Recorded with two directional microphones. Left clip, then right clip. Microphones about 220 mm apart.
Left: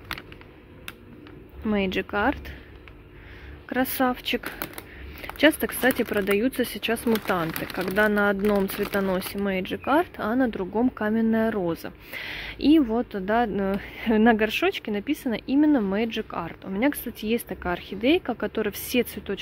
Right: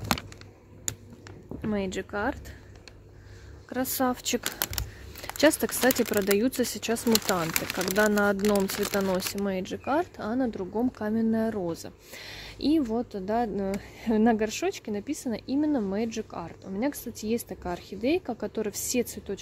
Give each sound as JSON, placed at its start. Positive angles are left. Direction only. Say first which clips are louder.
{"t": 1.7, "sound": "speech", "louder": "left 6 dB", "side_deg": 5}
{"t": 3.6, "sound": "speech", "louder": "left 4 dB", "side_deg": -5}
{"t": 4.1, "sound": "speech", "louder": "left 2 dB", "side_deg": -25}